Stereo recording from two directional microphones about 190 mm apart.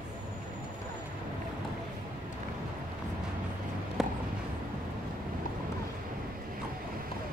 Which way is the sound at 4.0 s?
5° right (ahead or behind).